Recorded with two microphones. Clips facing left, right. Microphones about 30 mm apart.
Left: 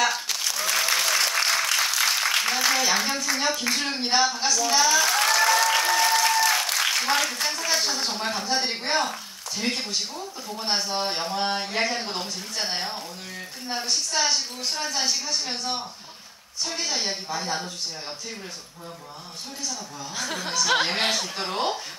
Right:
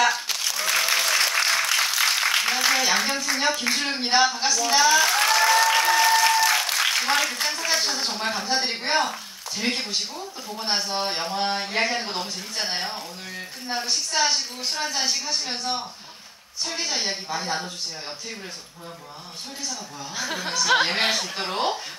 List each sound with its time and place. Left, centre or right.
0.0 s applause: centre
4.0 s speech: right
10.1 s speech: centre
20.2 s speech: centre